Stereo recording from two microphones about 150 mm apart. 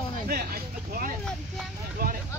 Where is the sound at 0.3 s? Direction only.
80° right.